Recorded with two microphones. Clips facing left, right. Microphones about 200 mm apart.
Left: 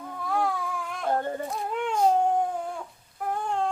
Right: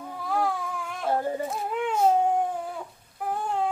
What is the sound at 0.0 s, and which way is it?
Baby cry, 5° right (ahead or behind).